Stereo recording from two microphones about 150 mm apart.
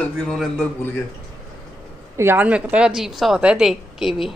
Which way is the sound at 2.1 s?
15° right (ahead or behind).